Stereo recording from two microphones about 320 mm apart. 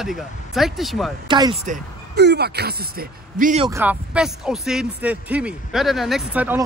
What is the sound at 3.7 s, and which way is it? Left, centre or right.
Speech, centre.